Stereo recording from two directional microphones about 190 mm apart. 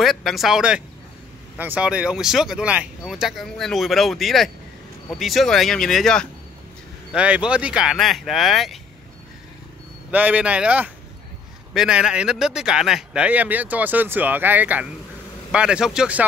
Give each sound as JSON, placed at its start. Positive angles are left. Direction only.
{"t": 0.0, "sound": "speech", "side_deg": 0}
{"t": 10.1, "sound": "speech", "side_deg": -5}